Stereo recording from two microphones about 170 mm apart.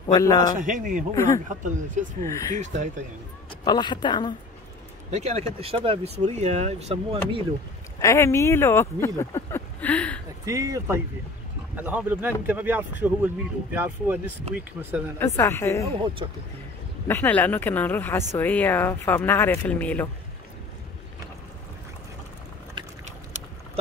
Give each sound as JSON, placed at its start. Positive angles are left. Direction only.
{"t": 0.0, "sound": "a woman's voice", "side_deg": 20}
{"t": 0.6, "sound": "speech", "side_deg": -50}
{"t": 1.1, "sound": "speech", "side_deg": 15}
{"t": 1.5, "sound": "speech", "side_deg": -50}
{"t": 2.2, "sound": "speech", "side_deg": 20}
{"t": 3.6, "sound": "a woman's voice", "side_deg": 25}
{"t": 5.1, "sound": "speech", "side_deg": -40}
{"t": 8.0, "sound": "speech", "side_deg": 15}
{"t": 10.4, "sound": "speech", "side_deg": -20}
{"t": 11.7, "sound": "speech", "side_deg": -10}
{"t": 15.1, "sound": "speech", "side_deg": 15}
{"t": 15.9, "sound": "speech", "side_deg": -30}
{"t": 17.1, "sound": "speech", "side_deg": 10}
{"t": 22.8, "sound": "a sound", "side_deg": -25}